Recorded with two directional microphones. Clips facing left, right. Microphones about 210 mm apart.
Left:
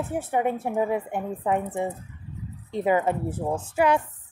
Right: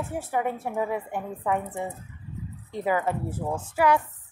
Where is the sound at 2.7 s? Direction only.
20° left (ahead or behind).